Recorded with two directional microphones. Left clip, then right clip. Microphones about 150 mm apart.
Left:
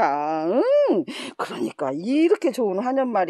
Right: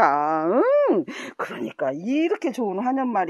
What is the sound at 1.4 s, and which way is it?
Speech, 30° left (ahead or behind).